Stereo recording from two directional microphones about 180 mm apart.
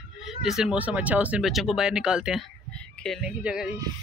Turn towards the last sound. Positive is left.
turn(degrees=-5)  # may be behind; listen again after turning